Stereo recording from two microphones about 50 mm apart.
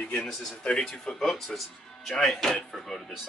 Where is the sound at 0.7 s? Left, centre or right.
Centre.